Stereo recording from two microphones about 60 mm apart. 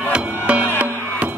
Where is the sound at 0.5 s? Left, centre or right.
Right.